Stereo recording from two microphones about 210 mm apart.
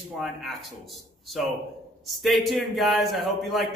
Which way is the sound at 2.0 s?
Centre (ahead or behind).